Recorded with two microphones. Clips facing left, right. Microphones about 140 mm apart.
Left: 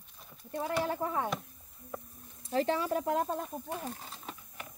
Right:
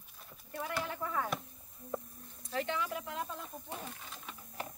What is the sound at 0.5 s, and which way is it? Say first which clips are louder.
Speech: left 6 dB; 30° left (ahead or behind).